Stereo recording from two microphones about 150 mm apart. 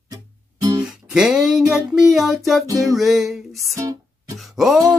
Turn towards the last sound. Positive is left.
turn(degrees=0)  # may be behind; listen again after turning